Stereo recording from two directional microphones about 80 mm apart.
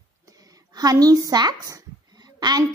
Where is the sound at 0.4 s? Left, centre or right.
Right.